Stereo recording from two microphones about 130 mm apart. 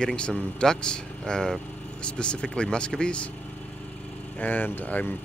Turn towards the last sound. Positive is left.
turn(degrees=10)  # may be behind; listen again after turning